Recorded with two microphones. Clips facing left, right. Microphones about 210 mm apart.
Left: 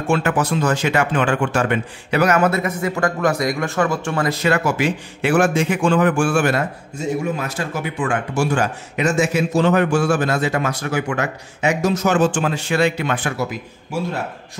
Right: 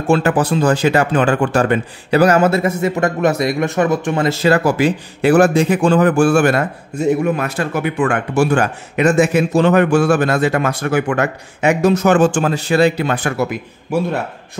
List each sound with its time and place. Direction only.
0.0 s speech: 35° right (ahead or behind)
6.4 s a man's voice: 60° right (ahead or behind); by 13.3 s 40° right (ahead or behind)